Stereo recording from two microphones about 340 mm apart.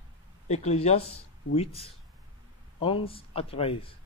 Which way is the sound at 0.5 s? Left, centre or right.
Centre.